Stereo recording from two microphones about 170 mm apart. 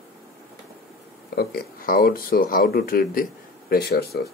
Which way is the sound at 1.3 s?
60° left (ahead or behind).